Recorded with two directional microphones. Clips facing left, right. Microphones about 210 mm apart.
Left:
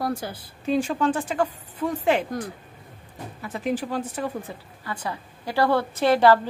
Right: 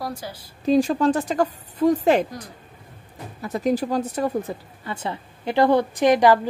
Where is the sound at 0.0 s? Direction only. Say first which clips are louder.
Left 3 dB; 55° left (ahead or behind).